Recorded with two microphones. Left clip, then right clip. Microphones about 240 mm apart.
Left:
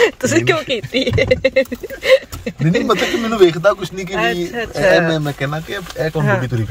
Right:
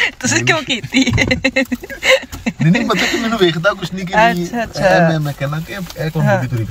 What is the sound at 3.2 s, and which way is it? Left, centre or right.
Speech, left.